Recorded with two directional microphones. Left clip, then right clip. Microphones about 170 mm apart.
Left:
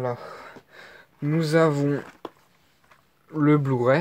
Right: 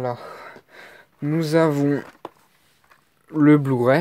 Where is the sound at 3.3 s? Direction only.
40° right (ahead or behind).